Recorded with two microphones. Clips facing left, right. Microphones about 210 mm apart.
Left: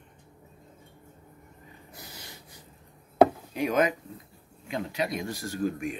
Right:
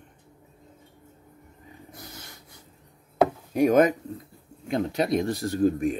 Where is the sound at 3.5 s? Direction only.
45° right (ahead or behind).